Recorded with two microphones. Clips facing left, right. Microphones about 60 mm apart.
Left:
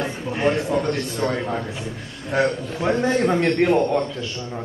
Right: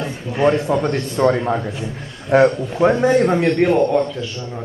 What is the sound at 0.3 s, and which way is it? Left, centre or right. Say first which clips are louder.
Speech: right 7 dB; left.